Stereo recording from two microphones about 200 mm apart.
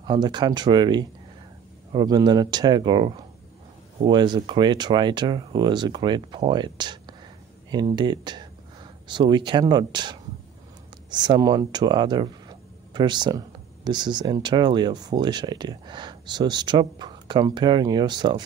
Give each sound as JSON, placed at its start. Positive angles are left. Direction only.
{"t": 0.0, "sound": "speech", "side_deg": -20}